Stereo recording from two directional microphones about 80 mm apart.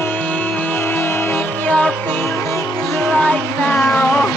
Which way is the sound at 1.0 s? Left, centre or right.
Left.